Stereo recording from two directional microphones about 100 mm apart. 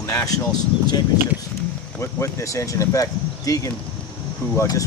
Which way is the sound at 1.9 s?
25° left (ahead or behind).